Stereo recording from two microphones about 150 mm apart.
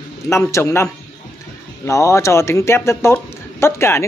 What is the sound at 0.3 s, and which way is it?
Speech, 20° left (ahead or behind).